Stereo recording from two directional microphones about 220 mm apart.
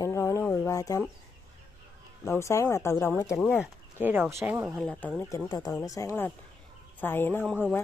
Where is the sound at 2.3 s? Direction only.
15° left (ahead or behind).